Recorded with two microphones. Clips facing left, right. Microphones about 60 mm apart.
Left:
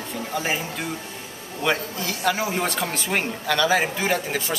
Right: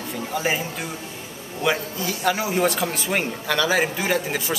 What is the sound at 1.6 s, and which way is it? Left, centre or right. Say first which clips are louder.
Speech: right 1 dB; centre.